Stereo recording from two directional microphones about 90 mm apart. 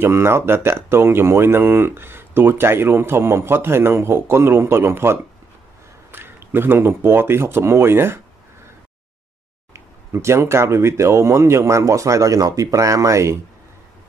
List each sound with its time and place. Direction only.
0.0 s speech: 30° right (ahead or behind)
10.1 s speech: 30° right (ahead or behind)